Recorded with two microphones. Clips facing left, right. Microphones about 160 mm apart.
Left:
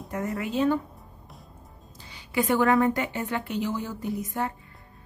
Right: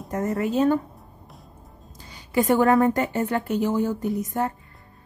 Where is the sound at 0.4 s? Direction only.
45° right (ahead or behind).